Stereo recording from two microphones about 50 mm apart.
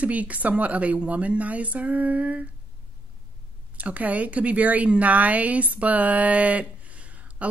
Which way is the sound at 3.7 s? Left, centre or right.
Right.